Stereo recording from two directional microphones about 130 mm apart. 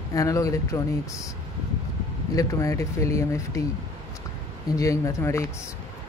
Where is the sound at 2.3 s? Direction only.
25° left (ahead or behind).